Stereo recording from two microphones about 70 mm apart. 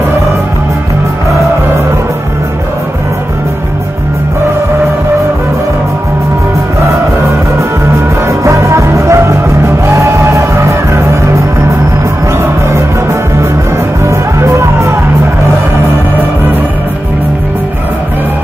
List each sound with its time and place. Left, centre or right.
8.3 s music: right